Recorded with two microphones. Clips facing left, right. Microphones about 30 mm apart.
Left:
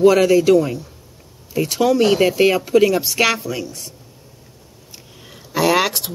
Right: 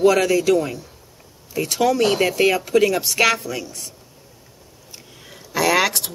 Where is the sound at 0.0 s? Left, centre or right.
Centre.